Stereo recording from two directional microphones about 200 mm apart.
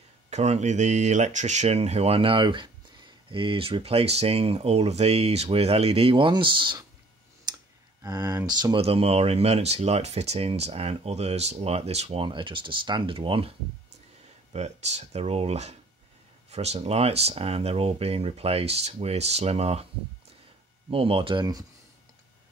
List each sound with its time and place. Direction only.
0.3 s speech: 35° right (ahead or behind)
7.5 s clicking: 20° right (ahead or behind)
8.0 s speech: 20° right (ahead or behind)
20.9 s speech: 25° right (ahead or behind)